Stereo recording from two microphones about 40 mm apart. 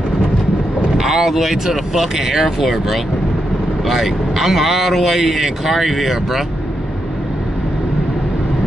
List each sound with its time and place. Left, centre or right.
0.9 s speech: centre